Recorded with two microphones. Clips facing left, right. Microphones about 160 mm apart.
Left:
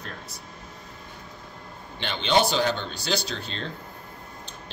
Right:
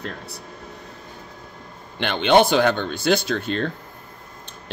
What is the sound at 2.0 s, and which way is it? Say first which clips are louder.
Speech: right 7 dB; 60° right (ahead or behind).